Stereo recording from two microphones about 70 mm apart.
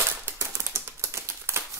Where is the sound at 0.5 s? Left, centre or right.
Right.